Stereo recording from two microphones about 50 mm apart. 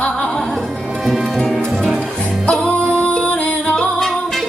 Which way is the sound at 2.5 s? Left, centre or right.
Left.